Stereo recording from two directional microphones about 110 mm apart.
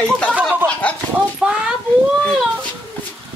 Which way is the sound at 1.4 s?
10° right (ahead or behind).